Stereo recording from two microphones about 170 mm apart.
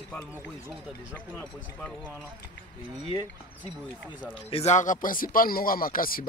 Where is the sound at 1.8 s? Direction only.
5° left (ahead or behind).